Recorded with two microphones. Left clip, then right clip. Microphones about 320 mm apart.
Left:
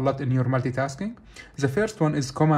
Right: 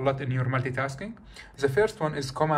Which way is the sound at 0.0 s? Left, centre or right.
Centre.